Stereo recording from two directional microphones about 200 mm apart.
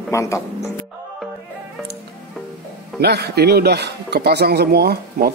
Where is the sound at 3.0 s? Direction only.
55° right (ahead or behind).